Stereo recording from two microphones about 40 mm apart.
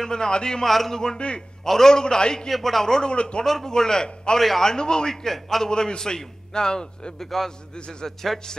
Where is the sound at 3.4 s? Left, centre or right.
Centre.